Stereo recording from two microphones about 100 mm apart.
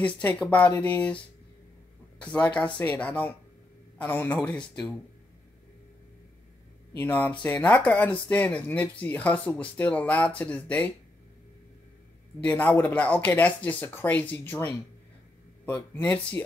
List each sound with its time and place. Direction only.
0.0 s speech: 15° left (ahead or behind)
7.0 s speech: 20° left (ahead or behind)
12.4 s speech: 15° left (ahead or behind)